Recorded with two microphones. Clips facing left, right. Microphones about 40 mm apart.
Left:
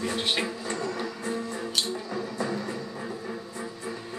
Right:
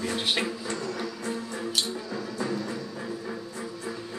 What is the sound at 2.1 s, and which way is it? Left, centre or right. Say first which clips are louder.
Music: left 1 dB; left.